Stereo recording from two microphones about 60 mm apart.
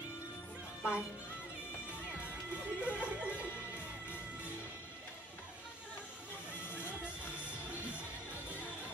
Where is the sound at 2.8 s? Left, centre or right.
Right.